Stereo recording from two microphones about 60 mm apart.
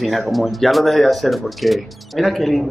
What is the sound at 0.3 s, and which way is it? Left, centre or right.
A man's voice, centre.